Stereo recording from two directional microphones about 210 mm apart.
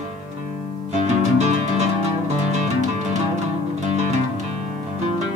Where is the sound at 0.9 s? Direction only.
30° right (ahead or behind).